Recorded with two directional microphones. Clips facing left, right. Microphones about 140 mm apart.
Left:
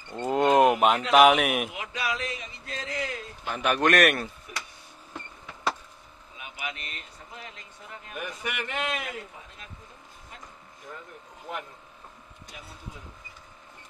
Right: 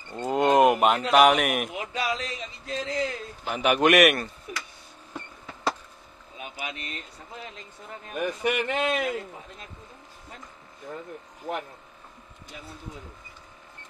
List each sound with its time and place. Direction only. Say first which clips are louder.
0.1 s a sound: even; centre (ahead or behind)
1.1 s speech: left 1 dB; centre (ahead or behind)
1.7 s a sound: right 3 dB; 30° right (ahead or behind)
3.4 s a man's voice: right 3 dB; 10° right (ahead or behind)
6.3 s vehicle: right 2 dB; 35° right (ahead or behind)
8.1 s speech: right 9 dB; 35° right (ahead or behind)